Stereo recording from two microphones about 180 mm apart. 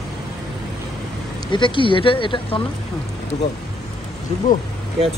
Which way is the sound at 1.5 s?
25° left (ahead or behind).